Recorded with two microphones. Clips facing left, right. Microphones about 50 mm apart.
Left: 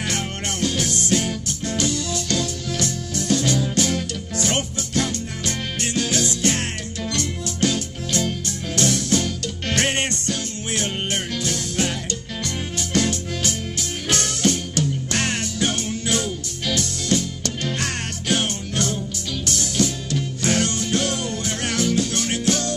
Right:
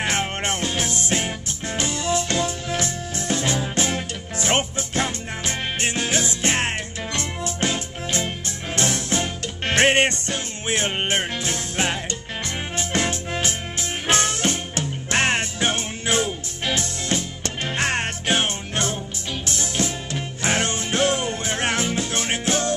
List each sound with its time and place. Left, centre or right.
0.0 s music: right